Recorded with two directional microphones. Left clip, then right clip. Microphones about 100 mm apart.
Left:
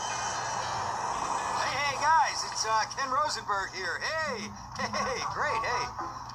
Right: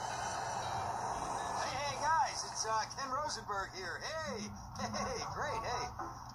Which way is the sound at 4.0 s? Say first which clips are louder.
Left 9 dB; 5° right (ahead or behind).